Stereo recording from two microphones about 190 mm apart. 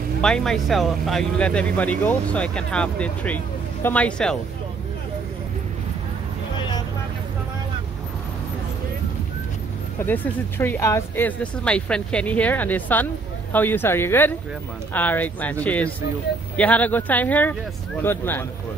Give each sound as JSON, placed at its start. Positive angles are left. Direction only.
{"t": 0.2, "sound": "speech", "side_deg": 5}
{"t": 9.9, "sound": "speech", "side_deg": 10}